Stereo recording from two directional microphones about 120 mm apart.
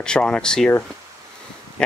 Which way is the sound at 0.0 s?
10° left (ahead or behind).